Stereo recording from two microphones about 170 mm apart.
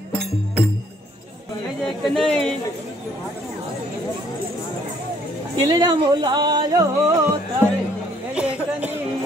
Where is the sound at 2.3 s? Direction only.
5° left (ahead or behind).